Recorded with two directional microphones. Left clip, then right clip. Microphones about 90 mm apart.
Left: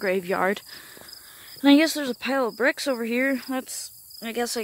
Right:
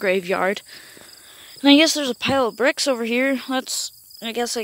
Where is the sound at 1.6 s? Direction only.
25° right (ahead or behind).